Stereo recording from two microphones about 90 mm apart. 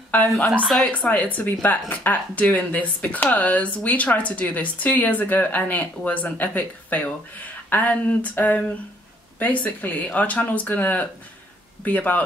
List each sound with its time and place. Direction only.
0.1 s a woman's voice: 15° left (ahead or behind)